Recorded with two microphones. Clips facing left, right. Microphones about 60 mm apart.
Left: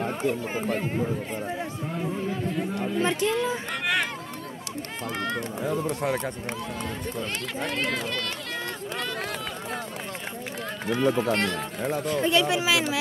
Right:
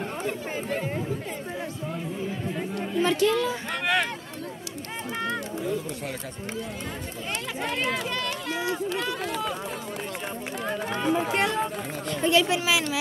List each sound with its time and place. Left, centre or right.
0.3 s speech: centre
3.0 s speech: left
3.8 s speech: centre
7.6 s speech: centre
10.9 s speech: centre
12.1 s speech: centre